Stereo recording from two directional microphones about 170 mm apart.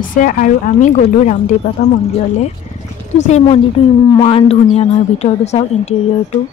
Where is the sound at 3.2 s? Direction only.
40° left (ahead or behind).